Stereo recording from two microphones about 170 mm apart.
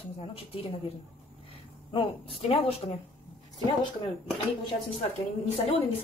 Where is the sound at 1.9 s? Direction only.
35° left (ahead or behind).